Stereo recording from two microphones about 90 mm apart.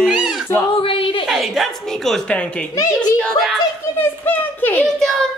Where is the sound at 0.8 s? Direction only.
80° left.